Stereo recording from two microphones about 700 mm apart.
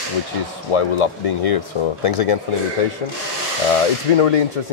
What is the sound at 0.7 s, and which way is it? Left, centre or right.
Speech, left.